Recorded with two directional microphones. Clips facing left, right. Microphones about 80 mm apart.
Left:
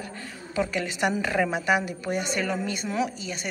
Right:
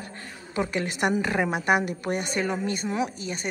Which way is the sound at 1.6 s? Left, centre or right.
Right.